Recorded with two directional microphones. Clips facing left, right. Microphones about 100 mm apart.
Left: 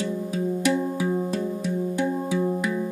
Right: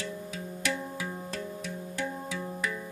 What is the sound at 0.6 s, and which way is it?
Music, 20° left (ahead or behind).